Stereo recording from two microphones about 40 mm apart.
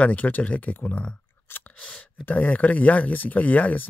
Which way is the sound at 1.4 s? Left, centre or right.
Left.